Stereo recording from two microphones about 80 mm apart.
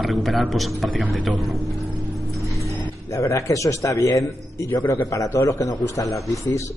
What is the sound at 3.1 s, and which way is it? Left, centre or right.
A man's voice, left.